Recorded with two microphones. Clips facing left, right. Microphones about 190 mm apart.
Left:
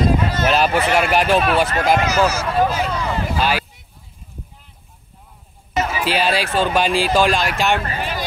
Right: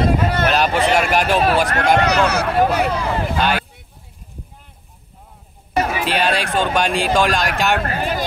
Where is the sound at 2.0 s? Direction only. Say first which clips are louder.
Right 1 dB; 65° right (ahead or behind).